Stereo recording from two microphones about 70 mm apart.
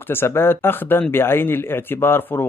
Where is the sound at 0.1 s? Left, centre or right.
Left.